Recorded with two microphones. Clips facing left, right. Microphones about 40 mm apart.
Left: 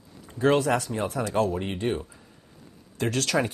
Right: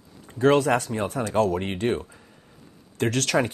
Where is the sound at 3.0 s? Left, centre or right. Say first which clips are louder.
Right 2 dB; right.